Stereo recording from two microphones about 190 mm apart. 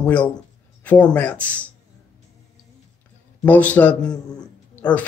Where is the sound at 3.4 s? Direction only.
10° left (ahead or behind).